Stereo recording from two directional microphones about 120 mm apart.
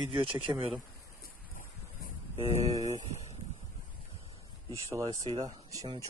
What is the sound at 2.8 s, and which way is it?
Speech, 85° right.